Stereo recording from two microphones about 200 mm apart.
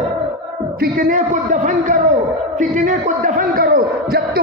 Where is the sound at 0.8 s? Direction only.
40° right (ahead or behind).